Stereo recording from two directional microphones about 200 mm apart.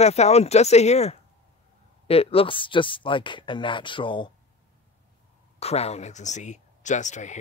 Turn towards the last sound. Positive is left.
turn(degrees=35)  # may be behind; listen again after turning